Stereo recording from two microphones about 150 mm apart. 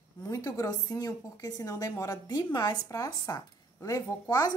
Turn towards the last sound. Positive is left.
turn(degrees=25)  # may be behind; listen again after turning